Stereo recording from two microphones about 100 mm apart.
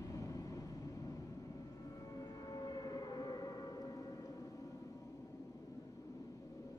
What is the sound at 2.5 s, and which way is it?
Civil defense siren, 40° left (ahead or behind).